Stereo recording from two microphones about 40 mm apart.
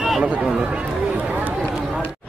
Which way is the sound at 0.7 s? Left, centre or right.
Right.